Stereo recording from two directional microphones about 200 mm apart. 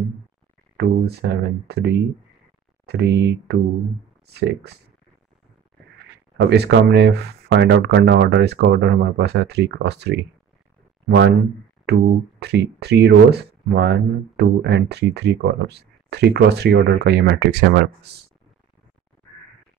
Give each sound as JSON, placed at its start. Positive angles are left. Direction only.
{"t": 0.7, "sound": "speech", "side_deg": -55}
{"t": 6.3, "sound": "speech", "side_deg": -55}